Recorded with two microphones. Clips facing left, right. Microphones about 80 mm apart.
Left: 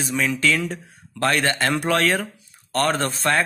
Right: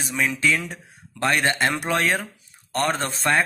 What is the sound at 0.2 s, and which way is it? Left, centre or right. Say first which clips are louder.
Speech: even; centre.